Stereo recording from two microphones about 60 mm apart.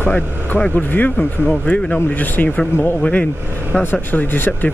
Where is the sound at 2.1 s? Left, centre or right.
Left.